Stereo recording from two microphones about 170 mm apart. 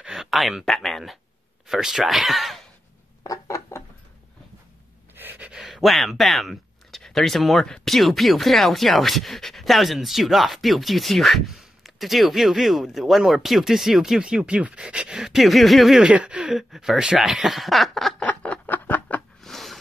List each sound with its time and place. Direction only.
0.0 s speech: centre (ahead or behind)
3.3 s a sound: 20° left (ahead or behind)
5.1 s speech: 10° right (ahead or behind)